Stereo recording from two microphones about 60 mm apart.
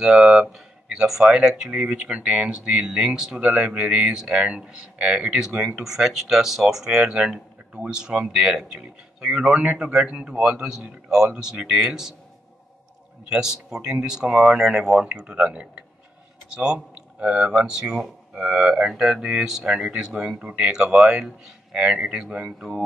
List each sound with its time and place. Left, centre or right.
0.0 s speech: centre
13.2 s speech: centre